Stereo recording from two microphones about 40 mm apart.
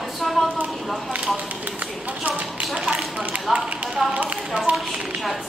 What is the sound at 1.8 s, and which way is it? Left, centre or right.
Speech, right.